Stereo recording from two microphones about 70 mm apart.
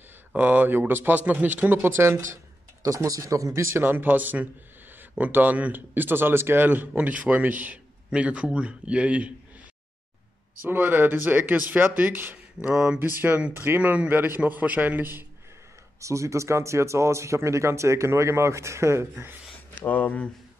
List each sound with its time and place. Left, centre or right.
0.3 s a man's voice: right
3.7 s a man's voice: right
10.6 s a man's voice: right
12.7 s speech: centre
13.0 s a man's voice: right
16.0 s speech: right
19.9 s speech: left